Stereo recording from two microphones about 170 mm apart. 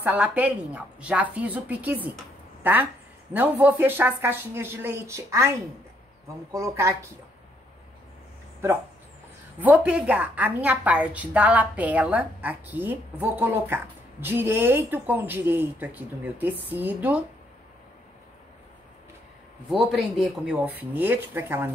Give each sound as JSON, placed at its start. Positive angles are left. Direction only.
{"t": 0.0, "sound": "a woman's voice", "side_deg": -10}
{"t": 9.6, "sound": "a woman's voice", "side_deg": -10}
{"t": 19.7, "sound": "a woman's voice", "side_deg": 0}